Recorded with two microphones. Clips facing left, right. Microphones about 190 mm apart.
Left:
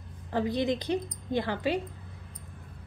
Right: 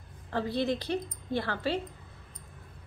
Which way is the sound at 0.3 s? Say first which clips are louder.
Left 2 dB; 15° left (ahead or behind).